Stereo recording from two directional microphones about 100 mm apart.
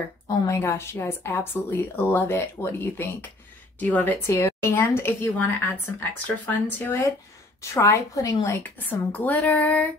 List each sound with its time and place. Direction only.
0.6 s speech: 25° left (ahead or behind)
4.3 s a woman's voice: 30° left (ahead or behind)
8.7 s speech: 15° left (ahead or behind)